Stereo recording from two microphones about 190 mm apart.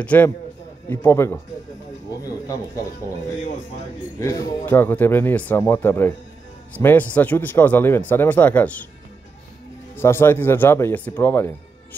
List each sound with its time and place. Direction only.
0.0 s speech: 10° left (ahead or behind)
4.2 s speech: 10° left (ahead or behind)
9.9 s speech: 10° left (ahead or behind)